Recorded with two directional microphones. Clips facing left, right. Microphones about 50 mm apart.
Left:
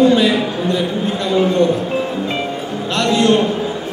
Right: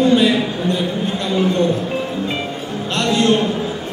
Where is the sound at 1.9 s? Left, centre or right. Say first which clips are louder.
Left 2 dB; centre.